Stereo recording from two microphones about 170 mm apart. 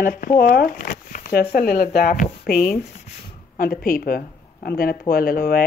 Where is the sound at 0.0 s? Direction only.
55° left (ahead or behind).